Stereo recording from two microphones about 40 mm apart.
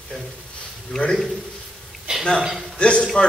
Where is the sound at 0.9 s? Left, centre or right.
Centre.